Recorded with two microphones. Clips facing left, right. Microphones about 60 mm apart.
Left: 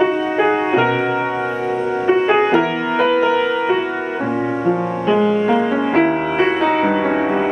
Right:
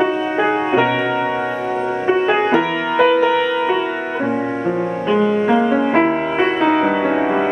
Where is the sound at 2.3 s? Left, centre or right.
Centre.